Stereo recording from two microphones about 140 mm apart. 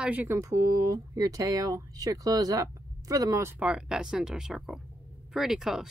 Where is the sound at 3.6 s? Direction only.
5° right (ahead or behind).